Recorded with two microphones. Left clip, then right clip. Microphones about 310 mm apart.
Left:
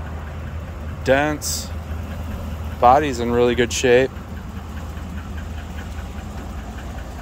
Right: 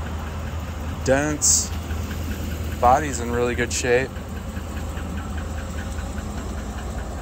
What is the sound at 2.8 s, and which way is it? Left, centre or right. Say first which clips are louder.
Speech: left 4 dB; left.